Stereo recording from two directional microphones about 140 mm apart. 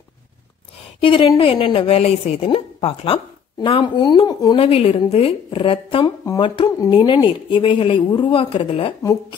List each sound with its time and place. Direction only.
1.0 s a woman's voice: 40° left (ahead or behind)
4.6 s a woman's voice: 40° left (ahead or behind)
6.2 s a woman's voice: 25° left (ahead or behind); by 8.9 s 40° left (ahead or behind)